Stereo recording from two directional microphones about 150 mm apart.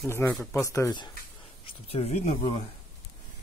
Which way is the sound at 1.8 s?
40° left (ahead or behind).